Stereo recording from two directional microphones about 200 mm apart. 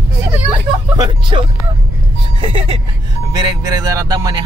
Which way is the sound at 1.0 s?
25° right (ahead or behind).